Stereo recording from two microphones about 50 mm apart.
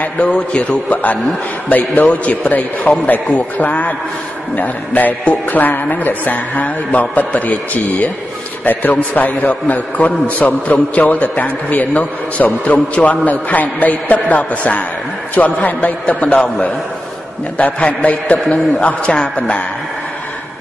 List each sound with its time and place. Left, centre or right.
0.3 s a man's voice: left
5.2 s speech: left
5.6 s a man's voice: left
16.3 s a man's voice: left